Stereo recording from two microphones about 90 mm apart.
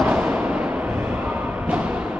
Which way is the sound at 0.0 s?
15° right (ahead or behind).